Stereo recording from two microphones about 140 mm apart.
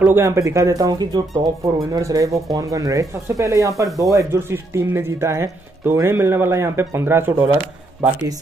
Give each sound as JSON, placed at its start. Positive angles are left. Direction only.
{"t": 0.0, "sound": "speech", "side_deg": -15}